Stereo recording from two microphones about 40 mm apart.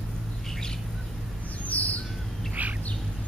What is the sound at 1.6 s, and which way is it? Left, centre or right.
Bird, left.